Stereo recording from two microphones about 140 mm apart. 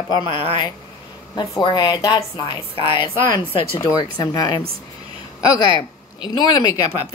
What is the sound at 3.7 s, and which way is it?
Speech, 20° left (ahead or behind).